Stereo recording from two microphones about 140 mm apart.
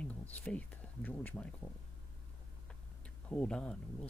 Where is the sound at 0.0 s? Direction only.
10° left (ahead or behind).